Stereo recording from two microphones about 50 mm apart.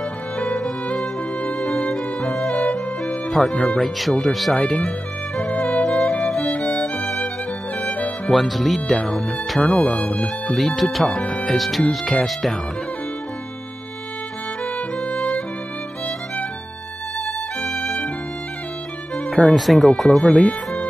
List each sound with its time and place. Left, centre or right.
2.7 s music: centre
3.8 s speech: centre
5.4 s music: left
6.5 s music: centre
8.3 s speech: centre
17.8 s music: centre
19.2 s music: centre
19.5 s speech: centre